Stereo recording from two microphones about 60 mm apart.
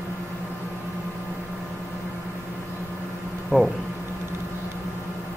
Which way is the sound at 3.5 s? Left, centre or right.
Right.